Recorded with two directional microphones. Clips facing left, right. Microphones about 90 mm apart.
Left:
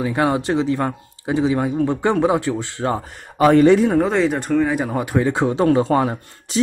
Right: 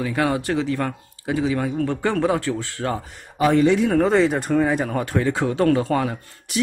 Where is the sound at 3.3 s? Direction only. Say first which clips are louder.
Left 5 dB; 50° left (ahead or behind).